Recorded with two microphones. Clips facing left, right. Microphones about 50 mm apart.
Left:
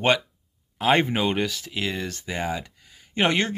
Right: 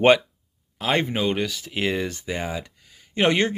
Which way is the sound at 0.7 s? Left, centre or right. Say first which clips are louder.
Left 2 dB; centre.